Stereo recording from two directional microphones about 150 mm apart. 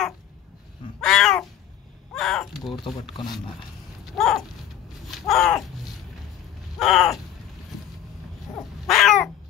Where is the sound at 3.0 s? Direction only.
30° left (ahead or behind).